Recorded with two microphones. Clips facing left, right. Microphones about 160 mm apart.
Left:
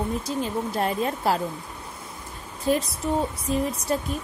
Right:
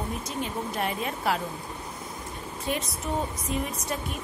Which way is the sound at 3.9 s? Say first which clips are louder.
Left 8 dB; 35° left (ahead or behind).